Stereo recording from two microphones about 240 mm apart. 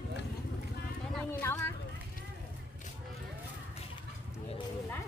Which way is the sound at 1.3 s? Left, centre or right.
Centre.